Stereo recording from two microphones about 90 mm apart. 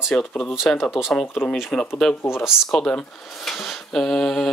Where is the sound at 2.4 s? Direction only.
5° left (ahead or behind).